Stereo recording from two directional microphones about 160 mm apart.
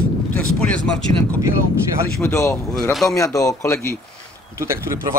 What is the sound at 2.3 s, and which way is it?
Speech, 20° left (ahead or behind).